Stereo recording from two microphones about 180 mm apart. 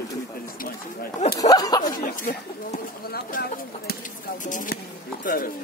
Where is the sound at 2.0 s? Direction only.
50° left (ahead or behind).